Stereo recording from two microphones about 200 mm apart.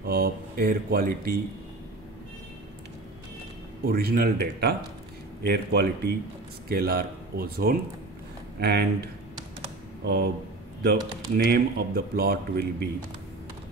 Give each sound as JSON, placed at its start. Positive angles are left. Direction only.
{"t": 0.0, "sound": "speech", "side_deg": -50}
{"t": 3.8, "sound": "speech", "side_deg": -50}
{"t": 10.0, "sound": "speech", "side_deg": -55}